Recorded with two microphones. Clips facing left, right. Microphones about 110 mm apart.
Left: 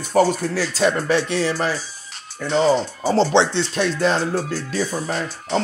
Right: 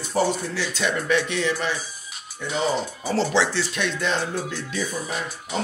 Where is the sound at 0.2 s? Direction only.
55° left (ahead or behind).